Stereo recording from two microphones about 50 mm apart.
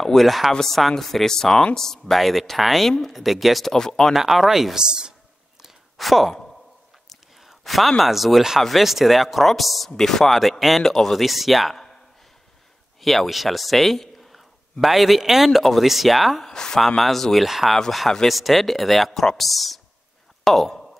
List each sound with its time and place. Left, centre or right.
0.0 s speech: centre
4.1 s speech: centre
4.8 s speech: centre
5.9 s speech: centre
7.1 s a sound: centre
8.0 s speech: centre
11.7 s a sound: centre
13.0 s a man's voice: centre
16.5 s speech: centre
20.4 s a sound: centre